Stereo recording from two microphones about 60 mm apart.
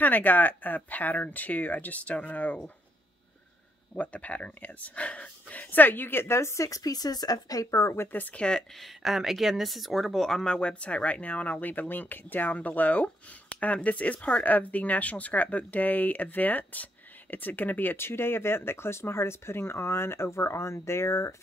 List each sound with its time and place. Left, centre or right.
0.0 s speech: left
3.9 s speech: left
8.1 s speech: left
8.4 s speech: centre
8.8 s speech: centre; by 21.4 s left